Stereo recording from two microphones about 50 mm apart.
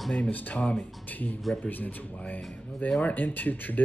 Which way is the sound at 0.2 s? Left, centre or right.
Left.